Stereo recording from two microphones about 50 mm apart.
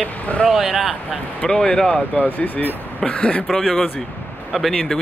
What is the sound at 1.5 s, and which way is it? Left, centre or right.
Speech, centre.